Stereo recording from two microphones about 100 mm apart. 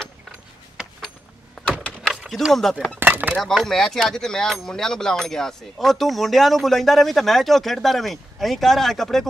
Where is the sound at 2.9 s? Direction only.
20° right (ahead or behind).